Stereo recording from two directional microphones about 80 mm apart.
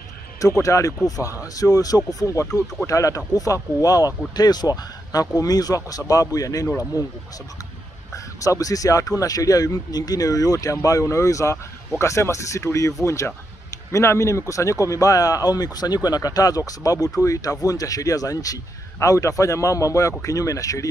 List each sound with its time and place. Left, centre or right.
0.4 s a man's voice: left